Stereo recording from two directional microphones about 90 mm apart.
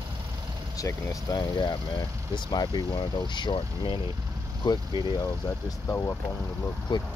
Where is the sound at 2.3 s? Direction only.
55° left (ahead or behind); by 4.0 s 80° left.